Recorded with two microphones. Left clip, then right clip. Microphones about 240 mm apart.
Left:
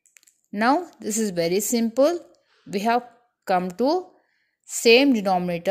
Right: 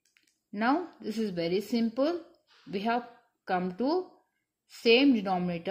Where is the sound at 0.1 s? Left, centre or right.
Left.